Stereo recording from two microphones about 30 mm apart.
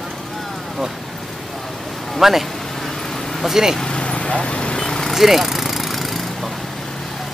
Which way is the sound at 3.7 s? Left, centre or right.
Left.